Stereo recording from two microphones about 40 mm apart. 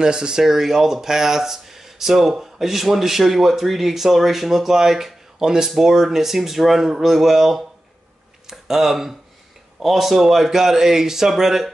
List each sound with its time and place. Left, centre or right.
0.0 s speech: centre
0.4 s speech: centre